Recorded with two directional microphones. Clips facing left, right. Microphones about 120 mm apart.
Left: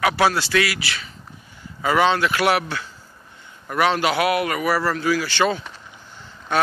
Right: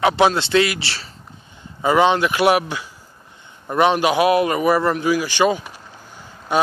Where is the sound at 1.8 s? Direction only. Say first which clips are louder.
Right 3 dB; 20° right (ahead or behind).